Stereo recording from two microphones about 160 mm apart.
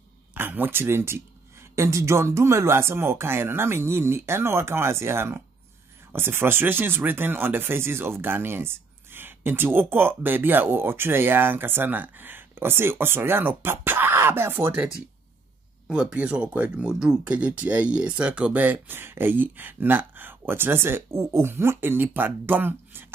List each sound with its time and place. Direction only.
0.3 s speech: 10° right (ahead or behind)
15.9 s speech: 5° right (ahead or behind)